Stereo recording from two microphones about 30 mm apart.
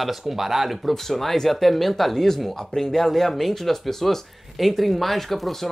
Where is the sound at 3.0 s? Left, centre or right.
Centre.